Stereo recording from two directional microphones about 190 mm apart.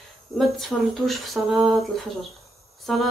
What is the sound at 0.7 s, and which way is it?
Speech, 5° left (ahead or behind).